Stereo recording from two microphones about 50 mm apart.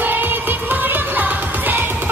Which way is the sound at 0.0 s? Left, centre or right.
Right.